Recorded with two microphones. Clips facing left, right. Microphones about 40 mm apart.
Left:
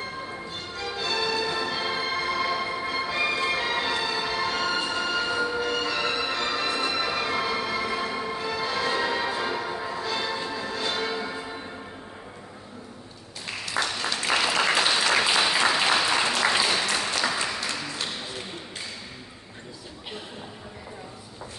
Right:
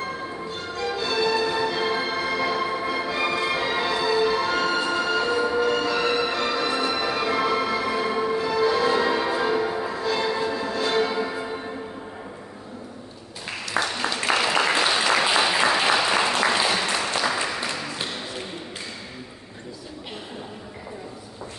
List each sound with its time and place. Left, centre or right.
0.7 s music: centre
13.8 s applause: right
14.3 s applause: right
14.8 s applause: centre